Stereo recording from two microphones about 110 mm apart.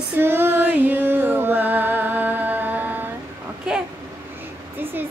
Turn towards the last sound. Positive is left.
turn(degrees=-5)  # may be behind; listen again after turning